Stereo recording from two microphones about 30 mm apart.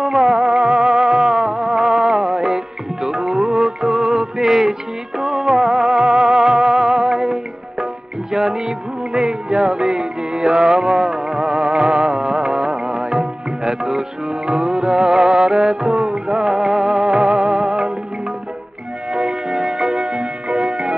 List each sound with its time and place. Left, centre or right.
0.0 s music: centre
5.9 s music: right
14.3 s music: right
15.8 s music of bollywood: right
17.1 s music: right
19.1 s music: right